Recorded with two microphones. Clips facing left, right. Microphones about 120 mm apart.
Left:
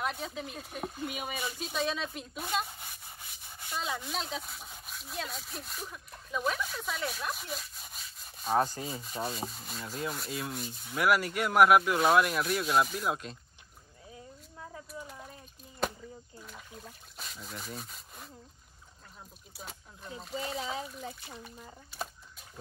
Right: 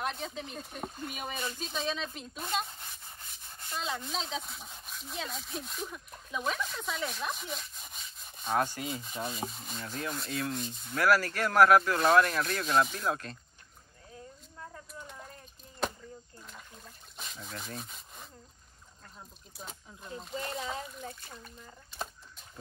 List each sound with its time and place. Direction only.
0.0 s speech: 5° left (ahead or behind)
8.7 s rub: 35° left (ahead or behind)
9.0 s speech: centre (ahead or behind)
11.0 s speech: 15° left (ahead or behind)
13.1 s speech: 15° left (ahead or behind)
14.9 s a sound: 5° left (ahead or behind)
16.4 s rub: 5° left (ahead or behind)
19.5 s speech: 5° left (ahead or behind)